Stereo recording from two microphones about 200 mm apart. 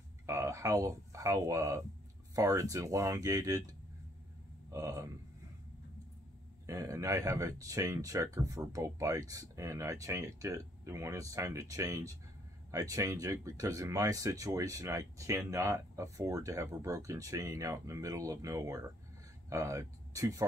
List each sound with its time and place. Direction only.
0.3 s speech: 15° right (ahead or behind)
4.7 s speech: 15° right (ahead or behind)
6.6 s speech: 15° right (ahead or behind)